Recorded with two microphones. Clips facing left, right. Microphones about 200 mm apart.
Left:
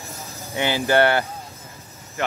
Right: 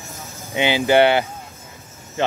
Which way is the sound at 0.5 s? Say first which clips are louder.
Right 3 dB; 15° right (ahead or behind).